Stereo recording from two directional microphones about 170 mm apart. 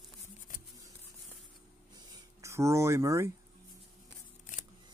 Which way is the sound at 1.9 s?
20° right (ahead or behind).